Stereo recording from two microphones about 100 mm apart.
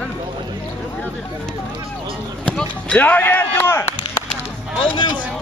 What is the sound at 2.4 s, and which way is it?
Speech, 10° left (ahead or behind).